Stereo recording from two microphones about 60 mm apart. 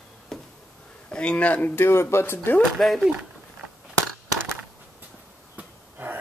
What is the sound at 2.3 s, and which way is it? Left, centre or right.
Speech, left.